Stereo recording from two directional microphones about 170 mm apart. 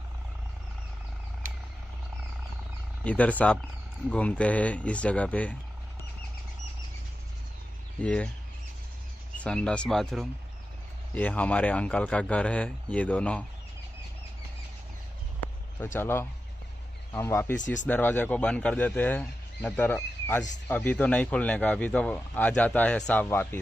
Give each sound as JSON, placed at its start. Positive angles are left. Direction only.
{"t": 3.0, "sound": "speech", "side_deg": 10}
{"t": 8.0, "sound": "speech", "side_deg": 10}
{"t": 9.4, "sound": "speech", "side_deg": 5}
{"t": 15.8, "sound": "speech", "side_deg": 15}